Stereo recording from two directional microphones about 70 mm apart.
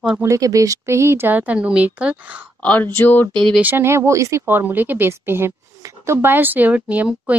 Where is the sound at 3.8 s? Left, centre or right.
Right.